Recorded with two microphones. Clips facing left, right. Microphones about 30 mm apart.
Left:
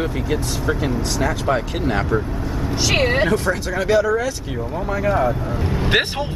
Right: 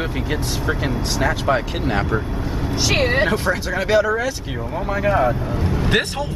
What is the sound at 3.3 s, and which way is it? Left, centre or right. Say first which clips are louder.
Speech: even; centre.